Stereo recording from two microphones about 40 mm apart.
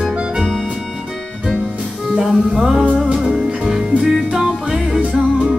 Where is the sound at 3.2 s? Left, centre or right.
Right.